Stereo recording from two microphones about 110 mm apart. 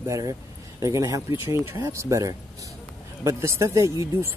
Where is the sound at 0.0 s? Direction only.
30° right (ahead or behind).